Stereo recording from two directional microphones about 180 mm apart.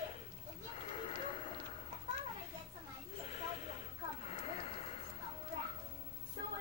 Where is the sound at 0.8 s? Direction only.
30° left (ahead or behind).